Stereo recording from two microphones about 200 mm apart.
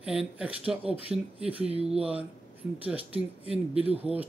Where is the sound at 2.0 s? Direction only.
5° right (ahead or behind).